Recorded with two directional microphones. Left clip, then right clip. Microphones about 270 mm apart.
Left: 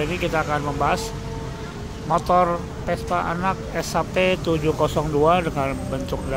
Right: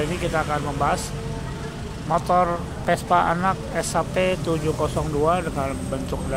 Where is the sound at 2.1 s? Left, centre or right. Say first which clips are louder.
Left 1 dB; centre.